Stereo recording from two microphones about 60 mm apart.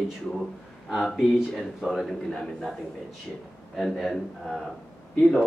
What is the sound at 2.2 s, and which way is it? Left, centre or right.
Speech, centre.